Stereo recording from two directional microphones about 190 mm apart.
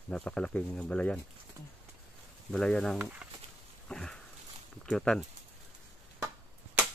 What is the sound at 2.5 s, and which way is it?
Speech, 5° left (ahead or behind).